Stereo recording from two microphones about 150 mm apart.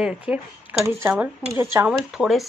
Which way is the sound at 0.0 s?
5° right (ahead or behind).